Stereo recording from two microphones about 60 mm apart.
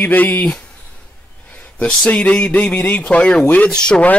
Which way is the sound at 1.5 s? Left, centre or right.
Left.